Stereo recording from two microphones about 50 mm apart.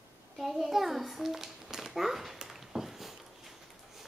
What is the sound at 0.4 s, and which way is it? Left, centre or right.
A child's voice, centre.